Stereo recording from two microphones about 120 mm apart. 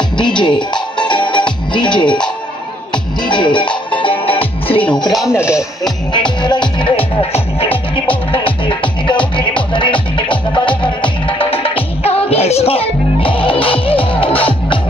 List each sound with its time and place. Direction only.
0.4 s music: 40° left (ahead or behind)
3.3 s music: 40° left (ahead or behind)
5.3 s speech: 20° left (ahead or behind)
6.4 s music: 40° left (ahead or behind)